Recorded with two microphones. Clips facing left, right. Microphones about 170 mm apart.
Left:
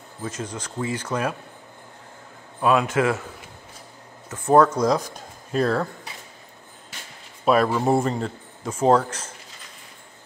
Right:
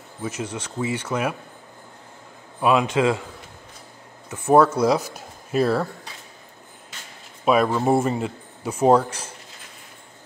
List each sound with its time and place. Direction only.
0.2 s speech: 10° right (ahead or behind)
2.6 s speech: 15° right (ahead or behind)
4.3 s speech: 10° right (ahead or behind)
7.4 s speech: centre (ahead or behind)